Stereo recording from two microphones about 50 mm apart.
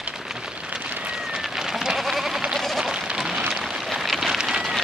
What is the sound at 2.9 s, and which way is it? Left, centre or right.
Rain on surface, centre.